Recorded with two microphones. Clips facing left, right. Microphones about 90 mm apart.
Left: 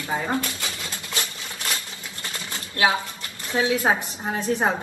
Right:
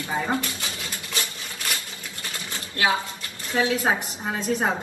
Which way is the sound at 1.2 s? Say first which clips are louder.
Left 1 dB; 25° left (ahead or behind).